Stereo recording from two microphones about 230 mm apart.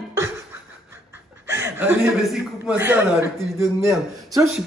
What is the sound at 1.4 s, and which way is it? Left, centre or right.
Chuckle, centre.